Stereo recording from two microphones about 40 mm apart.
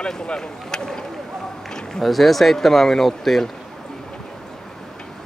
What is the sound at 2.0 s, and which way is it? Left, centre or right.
Speech, centre.